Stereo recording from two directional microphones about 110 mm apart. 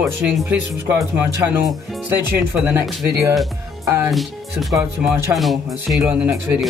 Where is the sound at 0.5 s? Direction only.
20° right (ahead or behind).